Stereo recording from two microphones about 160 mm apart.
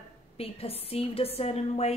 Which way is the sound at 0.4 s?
35° left (ahead or behind).